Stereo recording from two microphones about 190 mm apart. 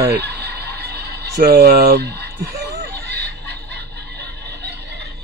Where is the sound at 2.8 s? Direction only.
60° right (ahead or behind).